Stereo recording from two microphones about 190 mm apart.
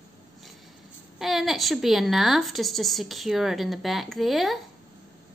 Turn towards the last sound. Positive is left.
turn(degrees=0)  # may be behind; listen again after turning